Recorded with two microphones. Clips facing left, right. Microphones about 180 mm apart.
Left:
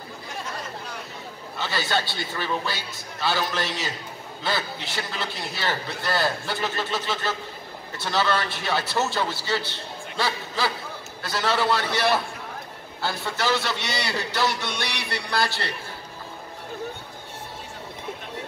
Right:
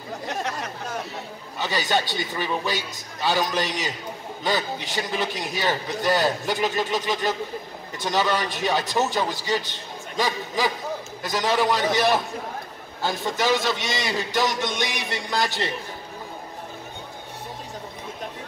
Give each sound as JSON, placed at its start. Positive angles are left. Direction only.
{"t": 0.3, "sound": "chatter", "side_deg": -75}
{"t": 1.6, "sound": "a man's voice", "side_deg": -15}